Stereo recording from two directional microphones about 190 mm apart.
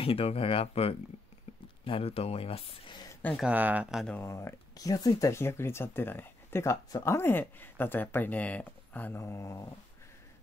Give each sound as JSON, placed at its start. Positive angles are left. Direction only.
{"t": 0.0, "sound": "speech", "side_deg": 30}
{"t": 3.2, "sound": "speech", "side_deg": 10}
{"t": 3.4, "sound": "speech", "side_deg": -10}
{"t": 4.2, "sound": "speech", "side_deg": 15}